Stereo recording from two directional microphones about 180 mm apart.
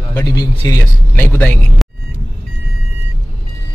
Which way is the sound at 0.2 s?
20° left (ahead or behind).